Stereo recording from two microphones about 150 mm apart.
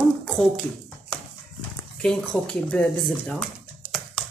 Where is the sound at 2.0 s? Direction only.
5° left (ahead or behind).